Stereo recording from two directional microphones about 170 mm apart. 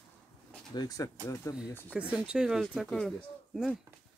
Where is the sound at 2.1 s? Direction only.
5° right (ahead or behind).